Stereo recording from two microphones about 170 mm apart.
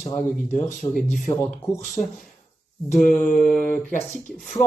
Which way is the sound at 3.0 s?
55° left (ahead or behind).